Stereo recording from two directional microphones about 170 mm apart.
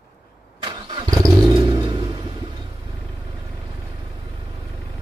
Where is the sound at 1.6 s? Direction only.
25° right (ahead or behind).